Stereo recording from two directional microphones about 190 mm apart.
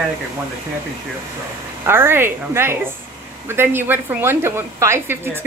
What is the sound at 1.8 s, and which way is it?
A woman's voice, 10° right (ahead or behind).